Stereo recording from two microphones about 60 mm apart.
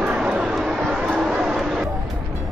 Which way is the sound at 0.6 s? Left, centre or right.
Centre.